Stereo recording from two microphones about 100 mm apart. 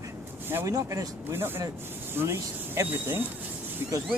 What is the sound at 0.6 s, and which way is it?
Speech, 35° right (ahead or behind).